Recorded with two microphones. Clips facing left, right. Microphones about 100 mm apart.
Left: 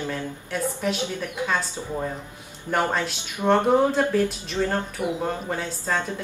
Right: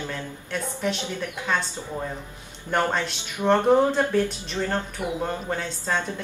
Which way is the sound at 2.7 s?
5° left (ahead or behind).